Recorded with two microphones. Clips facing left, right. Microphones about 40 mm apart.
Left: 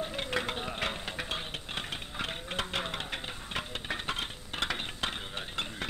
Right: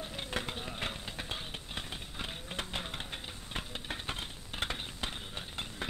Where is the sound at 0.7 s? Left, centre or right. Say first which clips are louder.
Left 5 dB; left.